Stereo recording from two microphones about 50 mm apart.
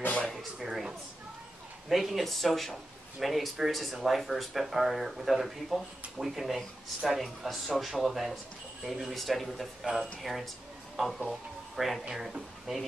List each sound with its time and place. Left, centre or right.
0.6 s speech: centre